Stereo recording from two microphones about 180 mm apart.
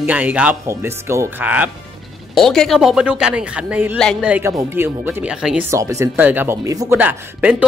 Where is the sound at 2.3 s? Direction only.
Centre (ahead or behind).